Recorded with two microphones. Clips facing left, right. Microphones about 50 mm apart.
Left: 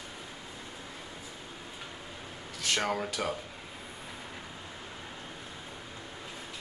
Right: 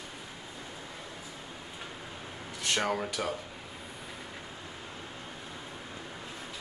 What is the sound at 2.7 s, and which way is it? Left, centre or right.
Speech, centre.